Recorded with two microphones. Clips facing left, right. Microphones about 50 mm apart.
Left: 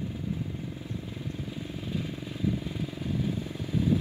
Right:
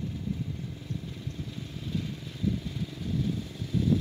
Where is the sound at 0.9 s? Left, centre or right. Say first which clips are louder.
Left 2 dB; centre.